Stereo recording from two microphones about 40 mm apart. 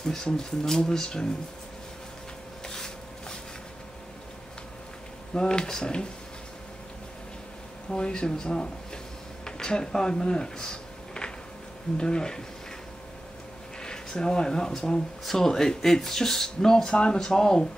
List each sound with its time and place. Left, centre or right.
0.0 s speech: centre
2.6 s rub: centre
5.3 s speech: left
7.9 s a sound: left
12.0 s speech: centre
13.7 s speech: centre